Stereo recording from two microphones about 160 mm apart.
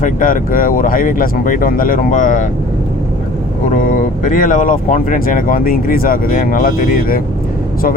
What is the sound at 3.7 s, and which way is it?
Speech, 55° left (ahead or behind).